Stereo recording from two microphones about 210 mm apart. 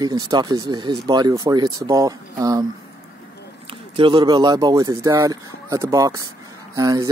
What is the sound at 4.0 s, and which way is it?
Speech, 20° right (ahead or behind).